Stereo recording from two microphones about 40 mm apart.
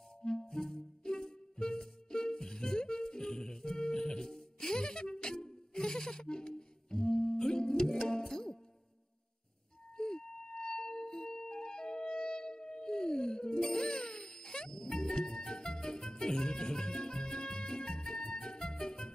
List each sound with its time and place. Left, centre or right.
0.2 s music: centre
9.9 s music: centre